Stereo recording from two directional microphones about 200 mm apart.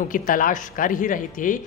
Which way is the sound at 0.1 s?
45° left (ahead or behind).